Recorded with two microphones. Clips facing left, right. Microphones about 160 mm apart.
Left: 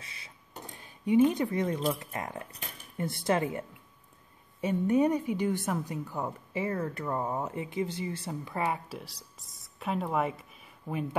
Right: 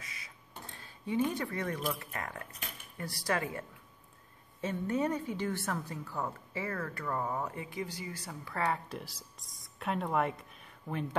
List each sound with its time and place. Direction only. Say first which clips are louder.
0.0 s a sound: even; 30° left (ahead or behind)
0.7 s a woman's voice: left 9 dB; 15° left (ahead or behind)
8.8 s speech: left 1 dB; centre (ahead or behind)